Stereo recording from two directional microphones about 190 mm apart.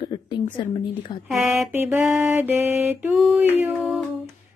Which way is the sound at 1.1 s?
20° left (ahead or behind).